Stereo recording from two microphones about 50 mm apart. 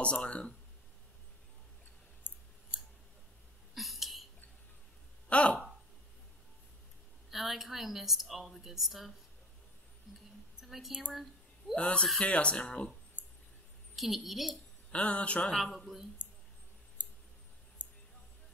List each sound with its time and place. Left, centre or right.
0.0 s speech: left
3.7 s a sound: centre
5.3 s speech: left
7.2 s a woman's voice: centre
10.6 s a sound: centre
10.9 s speech: centre
11.7 s speech: left
13.2 s a sound: left
13.9 s a woman's voice: centre
14.9 s speech: left
15.5 s a woman's voice: centre